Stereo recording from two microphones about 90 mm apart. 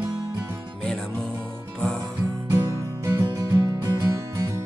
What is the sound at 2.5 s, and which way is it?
Music, 45° right (ahead or behind).